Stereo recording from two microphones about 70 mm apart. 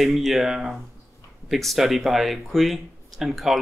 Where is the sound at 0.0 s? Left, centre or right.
Centre.